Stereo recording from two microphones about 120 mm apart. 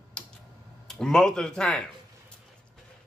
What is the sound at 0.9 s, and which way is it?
Speech, 5° left (ahead or behind).